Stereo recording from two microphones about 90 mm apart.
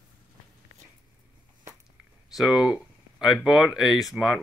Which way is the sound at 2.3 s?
5° right (ahead or behind).